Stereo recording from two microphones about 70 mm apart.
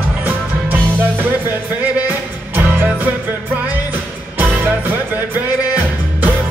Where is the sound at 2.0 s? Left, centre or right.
Right.